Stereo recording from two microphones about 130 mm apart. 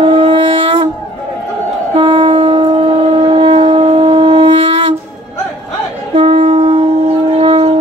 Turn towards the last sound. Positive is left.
turn(degrees=-50)  # may be behind; listen again after turning